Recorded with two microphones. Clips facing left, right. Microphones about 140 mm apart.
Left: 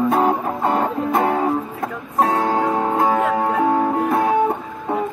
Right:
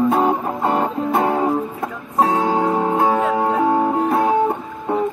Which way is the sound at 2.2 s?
15° right (ahead or behind).